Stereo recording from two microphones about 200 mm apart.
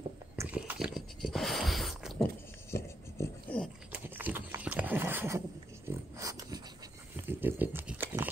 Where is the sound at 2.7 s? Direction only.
10° left (ahead or behind).